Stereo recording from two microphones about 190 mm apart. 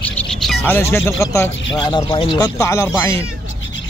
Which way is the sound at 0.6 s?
10° left (ahead or behind).